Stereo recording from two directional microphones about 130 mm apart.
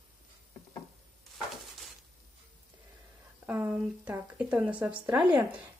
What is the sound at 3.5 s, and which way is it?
A woman's voice, 10° right (ahead or behind).